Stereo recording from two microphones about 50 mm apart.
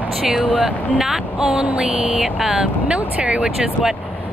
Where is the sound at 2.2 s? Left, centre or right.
Centre.